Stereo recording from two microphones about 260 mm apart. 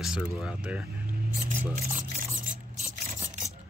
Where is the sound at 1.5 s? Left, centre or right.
Right.